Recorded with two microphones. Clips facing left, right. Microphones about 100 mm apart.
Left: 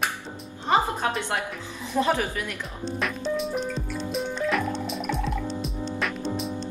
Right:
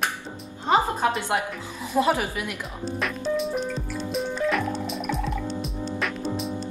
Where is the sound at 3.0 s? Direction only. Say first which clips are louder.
Right 2 dB; centre (ahead or behind).